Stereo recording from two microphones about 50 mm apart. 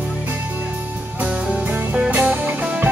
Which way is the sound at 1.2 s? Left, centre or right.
Right.